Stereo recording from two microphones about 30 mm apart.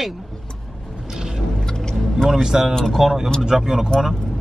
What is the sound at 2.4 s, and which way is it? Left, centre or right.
Speech, centre.